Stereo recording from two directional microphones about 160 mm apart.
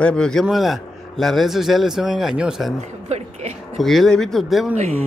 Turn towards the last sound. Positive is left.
turn(degrees=0)  # may be behind; listen again after turning